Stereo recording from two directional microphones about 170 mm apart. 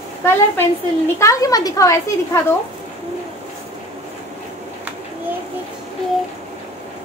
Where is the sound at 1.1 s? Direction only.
20° left (ahead or behind).